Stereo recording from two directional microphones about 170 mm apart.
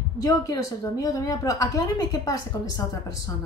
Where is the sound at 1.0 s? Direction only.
20° left (ahead or behind).